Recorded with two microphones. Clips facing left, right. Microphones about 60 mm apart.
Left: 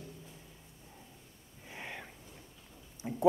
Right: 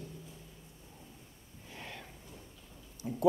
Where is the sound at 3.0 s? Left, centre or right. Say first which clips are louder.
Even; left.